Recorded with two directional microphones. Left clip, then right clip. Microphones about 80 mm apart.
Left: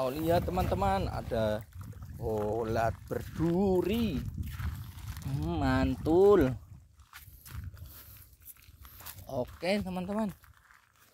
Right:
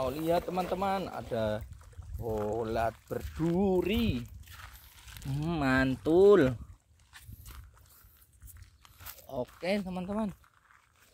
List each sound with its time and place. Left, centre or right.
0.0 s speech: left
2.1 s speech: centre
2.6 s speech: left; by 4.3 s centre
4.5 s a sound: left
5.5 s speech: right
9.3 s speech: left